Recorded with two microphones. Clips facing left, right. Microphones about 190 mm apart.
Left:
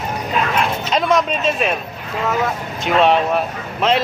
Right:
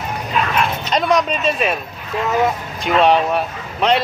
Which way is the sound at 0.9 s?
Centre (ahead or behind).